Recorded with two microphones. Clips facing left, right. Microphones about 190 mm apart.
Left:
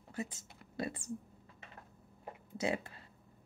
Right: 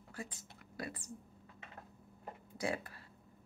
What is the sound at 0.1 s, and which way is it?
A woman's voice, 25° left (ahead or behind).